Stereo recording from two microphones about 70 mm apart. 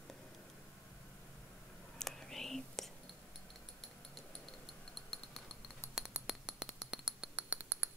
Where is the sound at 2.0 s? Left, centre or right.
Centre.